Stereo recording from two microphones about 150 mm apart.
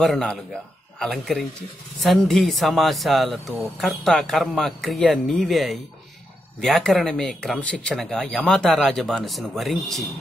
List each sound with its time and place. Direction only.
0.0 s speech: 5° left (ahead or behind)